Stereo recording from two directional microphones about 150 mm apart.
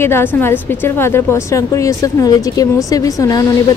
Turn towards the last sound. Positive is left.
turn(degrees=25)  # may be behind; listen again after turning